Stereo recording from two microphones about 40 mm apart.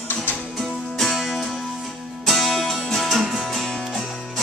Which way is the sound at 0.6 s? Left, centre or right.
Centre.